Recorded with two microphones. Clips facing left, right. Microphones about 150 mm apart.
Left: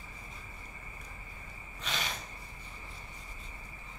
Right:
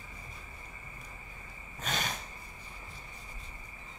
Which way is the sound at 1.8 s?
45° right (ahead or behind).